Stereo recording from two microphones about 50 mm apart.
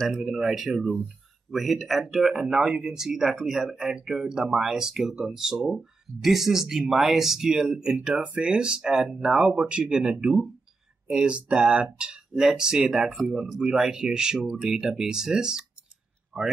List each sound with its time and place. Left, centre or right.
0.1 s speech: centre
2.4 s speech: centre
8.2 s speech: right